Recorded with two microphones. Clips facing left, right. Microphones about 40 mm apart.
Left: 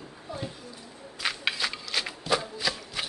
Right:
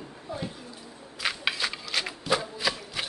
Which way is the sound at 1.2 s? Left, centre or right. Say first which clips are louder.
Even; centre.